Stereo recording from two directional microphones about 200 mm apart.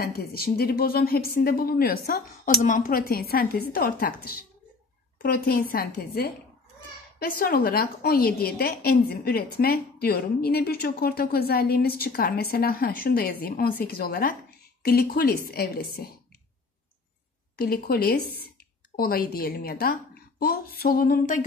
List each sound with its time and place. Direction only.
0.0 s a woman's voice: 50° left (ahead or behind)
17.6 s a woman's voice: 50° left (ahead or behind)